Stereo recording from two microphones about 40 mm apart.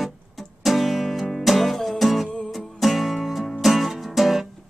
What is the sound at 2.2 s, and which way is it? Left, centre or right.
Music, centre.